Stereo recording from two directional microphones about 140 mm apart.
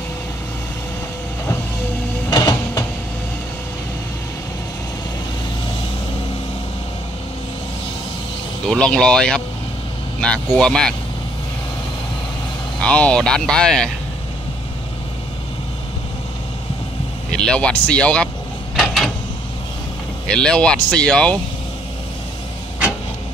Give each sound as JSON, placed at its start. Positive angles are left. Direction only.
{"t": 2.2, "sound": "printer", "side_deg": 25}
{"t": 8.6, "sound": "speech", "side_deg": 5}
{"t": 12.8, "sound": "speech", "side_deg": 10}
{"t": 17.3, "sound": "speech", "side_deg": 5}
{"t": 18.8, "sound": "a sound", "side_deg": 0}
{"t": 20.2, "sound": "speech", "side_deg": 5}